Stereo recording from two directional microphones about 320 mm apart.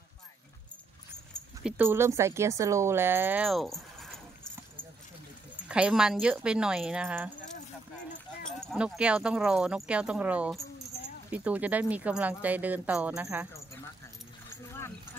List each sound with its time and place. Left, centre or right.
1.6 s speech: centre
5.7 s speech: centre
8.5 s speech: centre
10.9 s keys jangling: centre
11.2 s speech: centre